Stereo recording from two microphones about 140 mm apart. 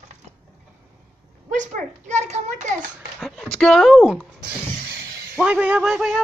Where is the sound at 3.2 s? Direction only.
Centre (ahead or behind).